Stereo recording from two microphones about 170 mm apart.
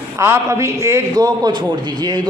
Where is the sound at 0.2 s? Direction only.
15° right (ahead or behind).